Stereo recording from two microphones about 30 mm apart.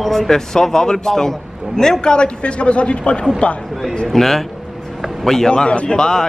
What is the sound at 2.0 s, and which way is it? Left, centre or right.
A man's voice, left.